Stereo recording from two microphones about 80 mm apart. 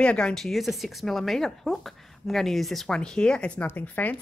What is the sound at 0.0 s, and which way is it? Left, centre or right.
Speech, centre.